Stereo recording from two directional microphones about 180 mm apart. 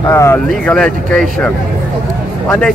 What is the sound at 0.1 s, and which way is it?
Speech, 15° left (ahead or behind).